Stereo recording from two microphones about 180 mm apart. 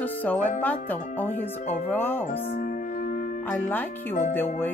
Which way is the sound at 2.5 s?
50° left (ahead or behind).